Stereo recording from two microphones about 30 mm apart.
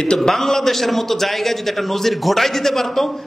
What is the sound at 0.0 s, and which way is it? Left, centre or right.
Speech, left.